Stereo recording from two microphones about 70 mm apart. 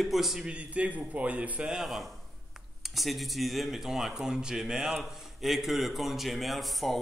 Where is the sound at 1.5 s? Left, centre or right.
Centre.